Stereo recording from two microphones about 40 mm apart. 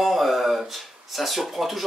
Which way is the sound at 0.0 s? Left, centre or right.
Centre.